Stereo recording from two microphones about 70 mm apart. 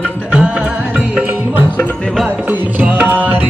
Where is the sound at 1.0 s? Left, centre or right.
Right.